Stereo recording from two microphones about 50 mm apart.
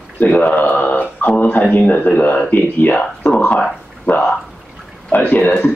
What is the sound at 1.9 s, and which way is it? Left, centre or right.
Speech, left.